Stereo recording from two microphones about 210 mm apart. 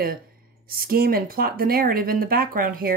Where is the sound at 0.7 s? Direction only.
45° right (ahead or behind).